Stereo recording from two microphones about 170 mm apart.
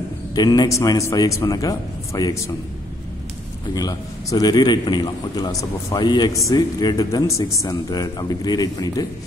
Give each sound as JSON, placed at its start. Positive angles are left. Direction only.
{"t": 0.3, "sound": "a man's voice", "side_deg": 25}
{"t": 3.7, "sound": "a man's voice", "side_deg": 20}